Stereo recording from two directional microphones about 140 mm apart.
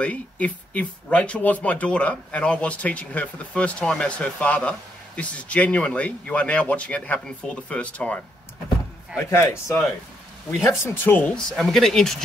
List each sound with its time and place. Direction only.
0.0 s speech: 10° left (ahead or behind)
9.3 s speech: 20° left (ahead or behind); by 12.2 s 5° left (ahead or behind)